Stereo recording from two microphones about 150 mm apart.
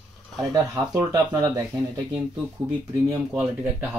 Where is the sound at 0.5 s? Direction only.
20° right (ahead or behind).